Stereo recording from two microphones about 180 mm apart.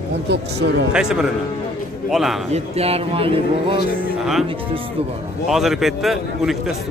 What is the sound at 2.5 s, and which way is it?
A man's voice, 35° right (ahead or behind).